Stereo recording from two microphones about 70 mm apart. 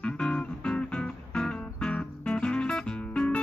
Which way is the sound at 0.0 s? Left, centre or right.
Centre.